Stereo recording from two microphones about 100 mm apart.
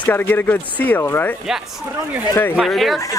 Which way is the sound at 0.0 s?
20° left (ahead or behind).